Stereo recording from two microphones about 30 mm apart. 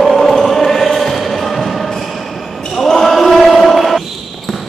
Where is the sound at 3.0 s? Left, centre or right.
Centre.